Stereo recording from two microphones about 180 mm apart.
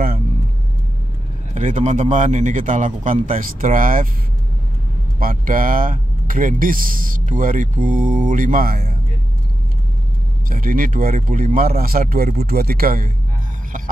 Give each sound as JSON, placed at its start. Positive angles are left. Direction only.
{"t": 1.5, "sound": "speech", "side_deg": -40}
{"t": 5.2, "sound": "speech", "side_deg": -50}
{"t": 10.5, "sound": "speech", "side_deg": -50}